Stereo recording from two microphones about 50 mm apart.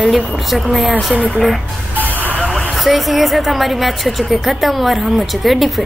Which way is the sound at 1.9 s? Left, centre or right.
Right.